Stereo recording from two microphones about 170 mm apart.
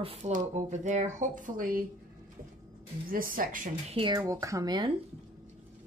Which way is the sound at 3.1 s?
55° right (ahead or behind).